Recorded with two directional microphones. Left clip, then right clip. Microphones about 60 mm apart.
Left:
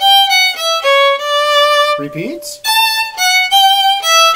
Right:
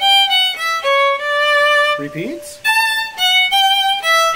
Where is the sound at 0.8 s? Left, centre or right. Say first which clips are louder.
Left 4 dB; left.